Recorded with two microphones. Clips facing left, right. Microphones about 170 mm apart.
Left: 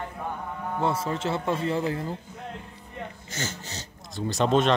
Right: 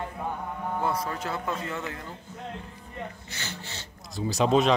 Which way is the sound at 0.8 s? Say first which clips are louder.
Left 5 dB; 25° left (ahead or behind).